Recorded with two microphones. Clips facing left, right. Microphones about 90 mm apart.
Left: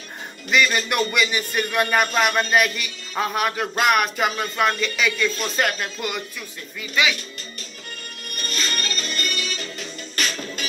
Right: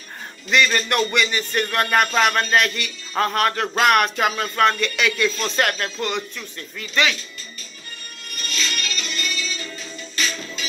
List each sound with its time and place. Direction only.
0.5 s a man's voice: 5° left (ahead or behind)
8.4 s music: 45° left (ahead or behind)